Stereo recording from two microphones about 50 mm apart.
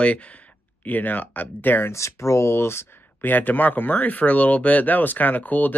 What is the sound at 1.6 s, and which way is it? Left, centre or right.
Speech, left.